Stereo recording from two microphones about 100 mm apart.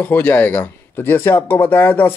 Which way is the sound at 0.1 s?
20° left (ahead or behind).